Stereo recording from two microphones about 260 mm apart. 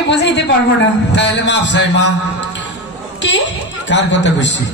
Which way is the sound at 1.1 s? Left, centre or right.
Left.